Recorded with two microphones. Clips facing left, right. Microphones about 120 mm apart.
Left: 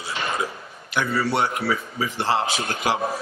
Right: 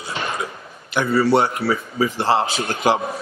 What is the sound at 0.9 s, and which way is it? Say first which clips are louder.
A man's voice: right 6 dB; 30° right (ahead or behind).